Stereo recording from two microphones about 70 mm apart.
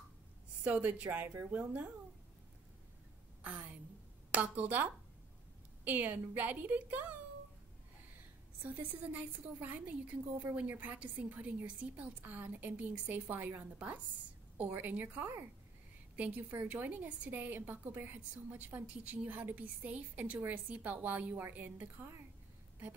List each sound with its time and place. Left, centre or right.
0.7 s a woman's voice: right
3.4 s a woman's voice: right
5.9 s a woman's voice: right
8.6 s a woman's voice: right